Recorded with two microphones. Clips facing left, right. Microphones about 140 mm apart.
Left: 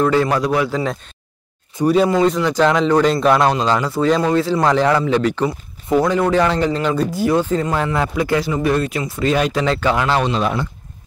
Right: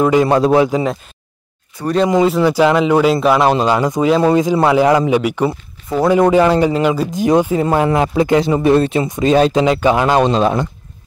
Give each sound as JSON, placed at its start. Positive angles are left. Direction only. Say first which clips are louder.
{"t": 0.0, "sound": "a man's voice", "louder": "right 3 dB", "side_deg": -15}
{"t": 0.3, "sound": "speech", "louder": "right 6 dB", "side_deg": -25}
{"t": 1.8, "sound": "speech", "louder": "left 5 dB", "side_deg": 20}
{"t": 2.2, "sound": "a man's voice", "louder": "right 3 dB", "side_deg": -5}
{"t": 3.6, "sound": "a man's voice", "louder": "right 3 dB", "side_deg": -15}
{"t": 10.2, "sound": "speech", "louder": "right 5 dB", "side_deg": -35}